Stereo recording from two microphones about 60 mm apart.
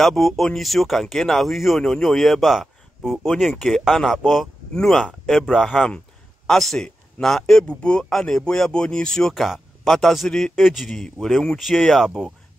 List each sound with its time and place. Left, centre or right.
0.0 s speech: centre
4.2 s speech: centre
4.7 s speech: centre
5.5 s a man's voice: centre
7.6 s speech: centre